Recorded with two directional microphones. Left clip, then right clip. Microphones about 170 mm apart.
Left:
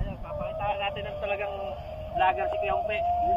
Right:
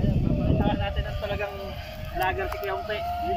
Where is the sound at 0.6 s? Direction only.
30° right (ahead or behind).